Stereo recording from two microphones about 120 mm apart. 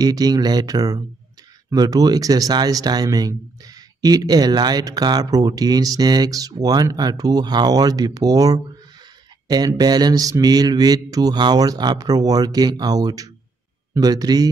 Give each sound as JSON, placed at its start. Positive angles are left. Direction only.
{"t": 0.0, "sound": "speech", "side_deg": -30}
{"t": 9.8, "sound": "speech", "side_deg": -35}